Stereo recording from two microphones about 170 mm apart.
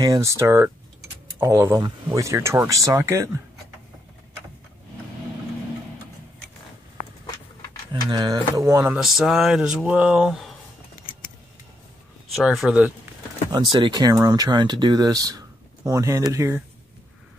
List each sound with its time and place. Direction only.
0.0 s speech: 20° right (ahead or behind)
8.1 s speech: 20° right (ahead or behind)
8.9 s speech: 5° right (ahead or behind)
12.4 s speech: centre (ahead or behind)
13.5 s speech: 25° right (ahead or behind)